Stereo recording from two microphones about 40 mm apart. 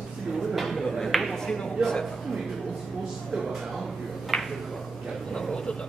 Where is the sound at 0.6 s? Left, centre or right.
Centre.